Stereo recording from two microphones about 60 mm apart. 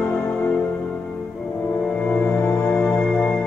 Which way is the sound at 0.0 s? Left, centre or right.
Centre.